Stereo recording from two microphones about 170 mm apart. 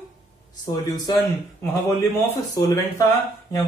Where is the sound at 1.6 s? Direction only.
15° left (ahead or behind).